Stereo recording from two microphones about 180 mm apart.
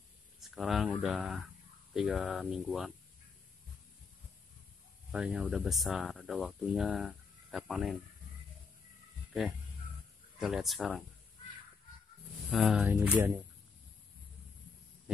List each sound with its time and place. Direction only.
0.4 s speech: centre (ahead or behind)
5.1 s speech: 5° right (ahead or behind)
10.4 s speech: centre (ahead or behind)
12.4 s speech: centre (ahead or behind)